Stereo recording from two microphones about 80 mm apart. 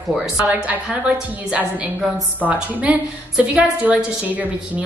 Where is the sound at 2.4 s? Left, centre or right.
Centre.